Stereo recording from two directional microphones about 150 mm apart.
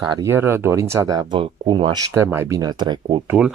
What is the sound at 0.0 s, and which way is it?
Speech, 30° right (ahead or behind).